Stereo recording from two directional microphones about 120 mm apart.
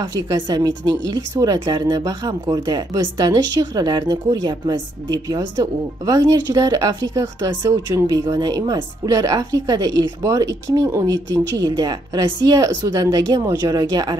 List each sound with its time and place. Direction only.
0.0 s a woman's voice: 30° right (ahead or behind)